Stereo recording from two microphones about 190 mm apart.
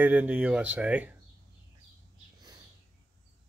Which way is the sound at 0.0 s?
10° right (ahead or behind).